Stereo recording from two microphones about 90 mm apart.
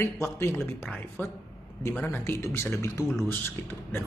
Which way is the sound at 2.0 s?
20° left (ahead or behind).